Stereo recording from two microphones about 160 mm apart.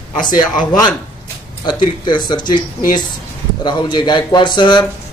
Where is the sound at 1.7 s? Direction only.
30° left (ahead or behind).